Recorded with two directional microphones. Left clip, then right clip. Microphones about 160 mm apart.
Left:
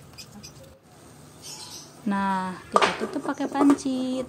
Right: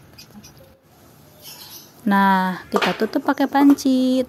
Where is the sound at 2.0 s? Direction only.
45° right (ahead or behind).